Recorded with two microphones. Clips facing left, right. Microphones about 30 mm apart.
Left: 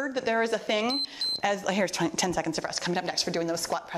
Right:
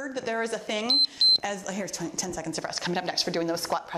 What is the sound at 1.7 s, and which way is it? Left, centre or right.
Speech, left.